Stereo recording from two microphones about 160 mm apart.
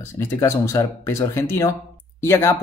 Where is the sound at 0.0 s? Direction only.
15° left (ahead or behind).